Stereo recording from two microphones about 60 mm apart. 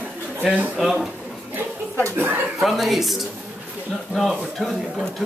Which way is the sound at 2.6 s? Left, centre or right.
Centre.